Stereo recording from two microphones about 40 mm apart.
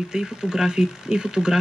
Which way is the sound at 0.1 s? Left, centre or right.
Centre.